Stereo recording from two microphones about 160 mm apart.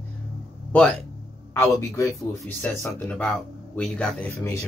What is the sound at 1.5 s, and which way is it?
Speech, 15° left (ahead or behind).